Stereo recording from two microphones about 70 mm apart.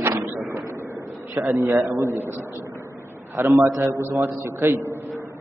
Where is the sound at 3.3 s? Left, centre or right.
Right.